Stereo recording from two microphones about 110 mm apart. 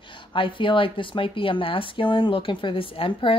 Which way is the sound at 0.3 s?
50° left (ahead or behind).